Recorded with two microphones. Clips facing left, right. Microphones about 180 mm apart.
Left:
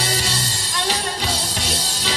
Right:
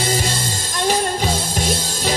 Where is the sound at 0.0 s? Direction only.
50° right (ahead or behind).